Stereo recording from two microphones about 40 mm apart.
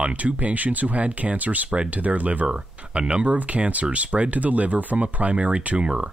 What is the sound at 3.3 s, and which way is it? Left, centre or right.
Speech, right.